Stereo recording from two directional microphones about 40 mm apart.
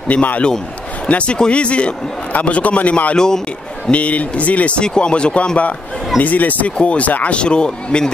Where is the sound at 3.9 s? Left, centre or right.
Left.